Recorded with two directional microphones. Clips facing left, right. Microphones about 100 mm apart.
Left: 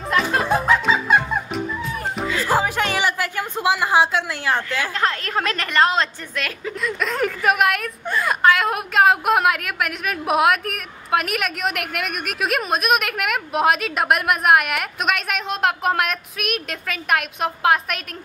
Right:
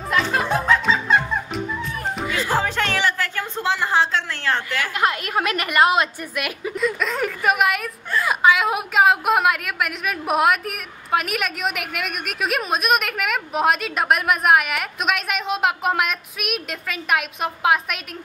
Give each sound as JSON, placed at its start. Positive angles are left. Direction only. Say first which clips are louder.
{"t": 0.1, "sound": "music", "louder": "left 1 dB", "side_deg": 5}
{"t": 5.0, "sound": "a woman's voice", "louder": "right 2 dB", "side_deg": -10}
{"t": 6.8, "sound": "a woman's voice", "louder": "even", "side_deg": 0}